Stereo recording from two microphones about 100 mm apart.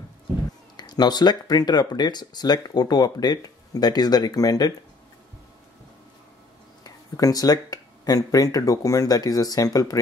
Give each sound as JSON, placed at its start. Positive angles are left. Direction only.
{"t": 0.7, "sound": "speech", "side_deg": 45}
{"t": 6.8, "sound": "speech", "side_deg": 40}